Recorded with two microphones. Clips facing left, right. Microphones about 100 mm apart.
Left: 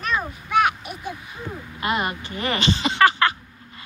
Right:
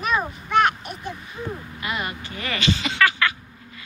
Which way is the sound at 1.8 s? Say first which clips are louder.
Left 5 dB; 25° left (ahead or behind).